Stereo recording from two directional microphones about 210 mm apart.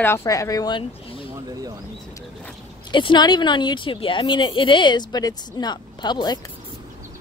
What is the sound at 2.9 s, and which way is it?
A woman's voice, 20° left (ahead or behind).